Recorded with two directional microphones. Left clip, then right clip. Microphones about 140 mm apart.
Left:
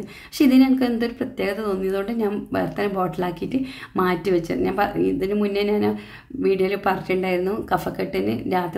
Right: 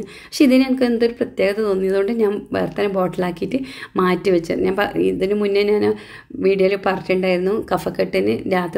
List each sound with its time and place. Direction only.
0.4 s speech: 25° right (ahead or behind)